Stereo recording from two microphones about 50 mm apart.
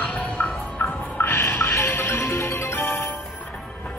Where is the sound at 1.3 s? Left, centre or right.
Left.